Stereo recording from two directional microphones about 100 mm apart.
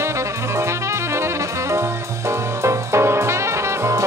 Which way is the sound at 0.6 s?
25° right (ahead or behind).